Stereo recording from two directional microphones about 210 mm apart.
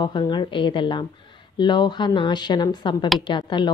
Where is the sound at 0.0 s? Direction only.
20° left (ahead or behind).